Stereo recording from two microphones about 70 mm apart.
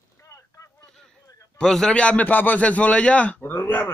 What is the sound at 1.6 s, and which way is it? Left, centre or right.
Speech, centre.